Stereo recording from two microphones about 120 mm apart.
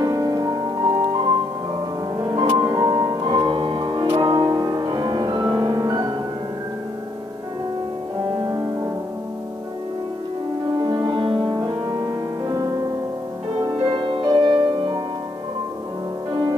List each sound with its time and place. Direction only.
0.0 s music: 30° right (ahead or behind)
2.1 s music: 30° right (ahead or behind)
8.5 s music: 30° right (ahead or behind)
10.8 s music: 35° right (ahead or behind)
13.8 s music: 40° right (ahead or behind)